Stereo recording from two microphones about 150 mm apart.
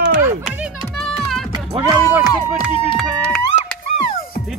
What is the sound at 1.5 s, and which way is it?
Music, 25° right (ahead or behind).